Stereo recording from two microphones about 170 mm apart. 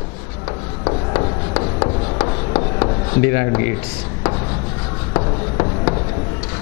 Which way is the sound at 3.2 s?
15° left (ahead or behind).